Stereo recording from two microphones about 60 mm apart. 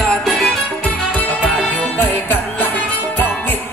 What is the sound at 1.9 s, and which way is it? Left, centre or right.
Music, left.